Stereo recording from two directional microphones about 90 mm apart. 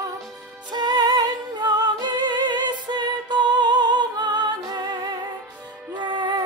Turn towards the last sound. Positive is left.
turn(degrees=-55)  # may be behind; listen again after turning